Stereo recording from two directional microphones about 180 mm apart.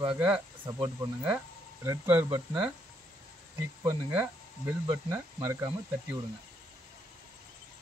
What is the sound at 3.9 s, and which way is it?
Speech, 10° right (ahead or behind).